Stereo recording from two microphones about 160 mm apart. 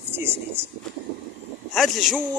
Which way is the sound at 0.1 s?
15° right (ahead or behind).